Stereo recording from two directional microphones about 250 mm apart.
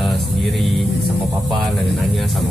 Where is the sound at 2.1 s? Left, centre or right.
Centre.